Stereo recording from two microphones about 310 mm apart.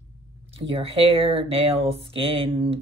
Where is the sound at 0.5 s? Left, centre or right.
Centre.